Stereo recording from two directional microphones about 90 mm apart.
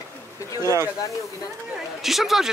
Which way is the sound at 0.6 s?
30° right (ahead or behind).